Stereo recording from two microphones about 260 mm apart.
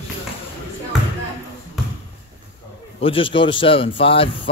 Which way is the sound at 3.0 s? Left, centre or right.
Left.